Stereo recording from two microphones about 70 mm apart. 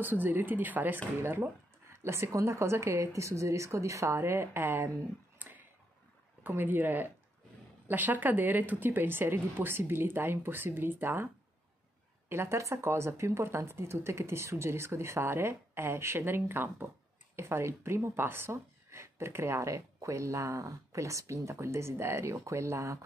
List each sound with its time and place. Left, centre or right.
0.0 s a woman's voice: right
6.4 s a woman's voice: right
12.3 s a woman's voice: right